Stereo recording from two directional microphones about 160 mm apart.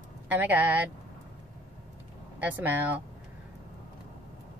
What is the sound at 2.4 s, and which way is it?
Speech, 10° right (ahead or behind).